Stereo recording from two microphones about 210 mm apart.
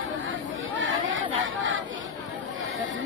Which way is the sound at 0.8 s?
65° right (ahead or behind).